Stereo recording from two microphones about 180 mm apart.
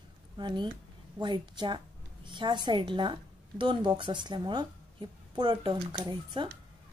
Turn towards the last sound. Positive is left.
turn(degrees=-25)  # may be behind; listen again after turning